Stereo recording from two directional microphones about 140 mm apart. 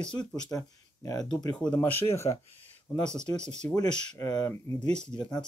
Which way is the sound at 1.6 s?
10° left (ahead or behind).